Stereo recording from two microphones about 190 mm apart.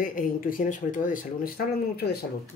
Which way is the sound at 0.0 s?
45° left (ahead or behind).